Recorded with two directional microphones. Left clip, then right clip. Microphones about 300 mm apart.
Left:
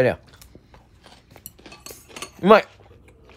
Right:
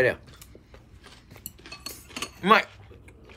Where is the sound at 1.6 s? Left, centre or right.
Left.